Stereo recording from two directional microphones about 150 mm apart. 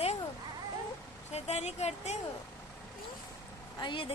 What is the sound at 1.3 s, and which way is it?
Speech, 45° left (ahead or behind).